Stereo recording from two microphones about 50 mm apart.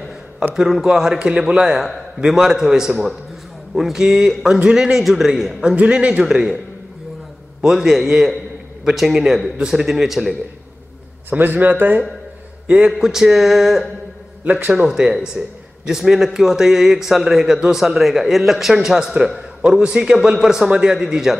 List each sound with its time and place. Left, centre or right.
0.6 s speech: centre
1.2 s speech: centre
4.6 s a man's voice: right
4.9 s a man's voice: centre
5.8 s a man's voice: right
7.6 s a man's voice: centre
11.2 s a man's voice: right
12.6 s a man's voice: right
13.0 s speech: centre
14.9 s a man's voice: centre